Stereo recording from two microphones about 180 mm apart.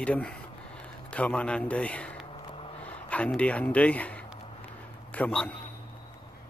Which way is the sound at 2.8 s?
5° left (ahead or behind).